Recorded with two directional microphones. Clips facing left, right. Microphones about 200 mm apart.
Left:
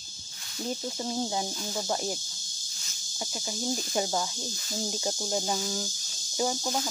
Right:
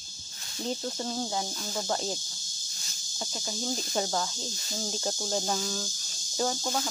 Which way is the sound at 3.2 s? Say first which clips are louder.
Left 1 dB; 10° left (ahead or behind).